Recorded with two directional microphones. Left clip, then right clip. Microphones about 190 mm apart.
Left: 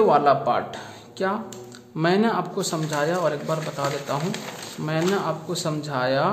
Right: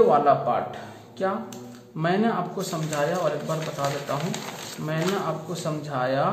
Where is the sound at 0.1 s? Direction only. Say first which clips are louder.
Left 1 dB; 40° left (ahead or behind).